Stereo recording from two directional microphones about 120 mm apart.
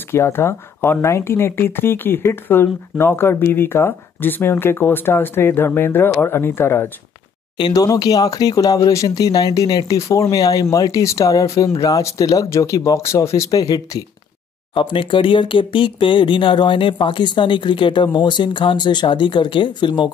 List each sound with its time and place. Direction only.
0.1 s speech: 20° left (ahead or behind)
7.5 s speech: 35° left (ahead or behind)
14.7 s speech: 45° left (ahead or behind)